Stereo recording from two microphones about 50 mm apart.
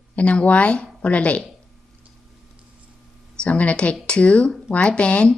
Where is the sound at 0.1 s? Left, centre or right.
Left.